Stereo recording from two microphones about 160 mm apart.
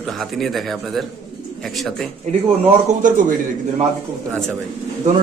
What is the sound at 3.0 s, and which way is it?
Speech, 55° right (ahead or behind).